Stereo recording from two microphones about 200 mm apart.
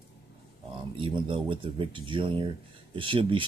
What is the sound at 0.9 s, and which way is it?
Speech, 25° right (ahead or behind).